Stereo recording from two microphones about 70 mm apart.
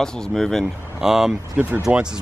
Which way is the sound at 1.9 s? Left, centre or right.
Right.